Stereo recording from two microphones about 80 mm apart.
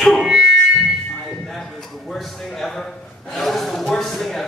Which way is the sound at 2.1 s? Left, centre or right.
Centre.